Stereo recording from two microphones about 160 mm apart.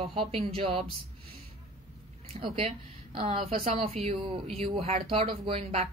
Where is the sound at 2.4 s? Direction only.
35° right (ahead or behind).